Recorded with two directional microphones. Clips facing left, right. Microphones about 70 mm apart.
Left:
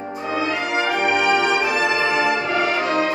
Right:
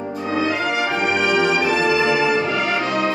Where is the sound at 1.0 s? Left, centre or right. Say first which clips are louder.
Even; left.